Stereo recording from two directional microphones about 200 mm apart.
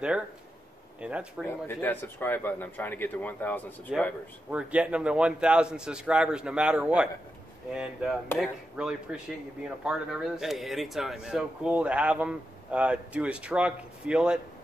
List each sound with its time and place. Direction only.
1.0 s speech: 5° right (ahead or behind)
1.5 s speech: 10° left (ahead or behind)
3.9 s speech: 5° right (ahead or behind)